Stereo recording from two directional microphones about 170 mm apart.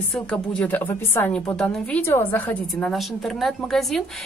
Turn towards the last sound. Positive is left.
turn(degrees=0)  # may be behind; listen again after turning